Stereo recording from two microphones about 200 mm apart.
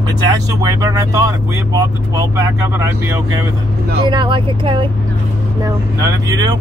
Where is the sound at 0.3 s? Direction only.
20° right (ahead or behind).